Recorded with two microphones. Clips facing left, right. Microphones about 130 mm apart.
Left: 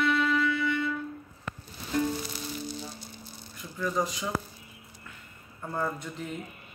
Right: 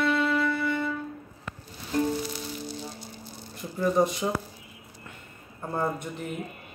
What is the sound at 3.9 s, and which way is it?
Speech, 60° right (ahead or behind).